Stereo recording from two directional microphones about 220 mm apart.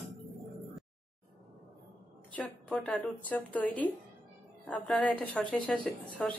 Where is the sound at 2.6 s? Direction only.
Centre (ahead or behind).